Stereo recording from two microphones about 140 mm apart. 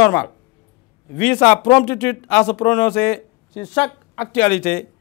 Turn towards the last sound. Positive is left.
turn(degrees=5)  # may be behind; listen again after turning